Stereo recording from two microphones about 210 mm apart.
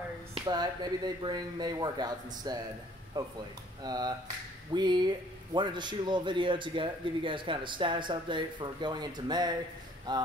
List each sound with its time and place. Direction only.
0.3 s speech: 20° right (ahead or behind)